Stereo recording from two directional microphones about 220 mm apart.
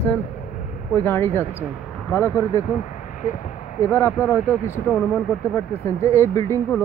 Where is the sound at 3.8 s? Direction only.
10° left (ahead or behind).